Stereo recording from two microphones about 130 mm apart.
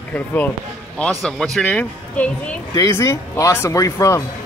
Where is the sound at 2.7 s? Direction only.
25° left (ahead or behind).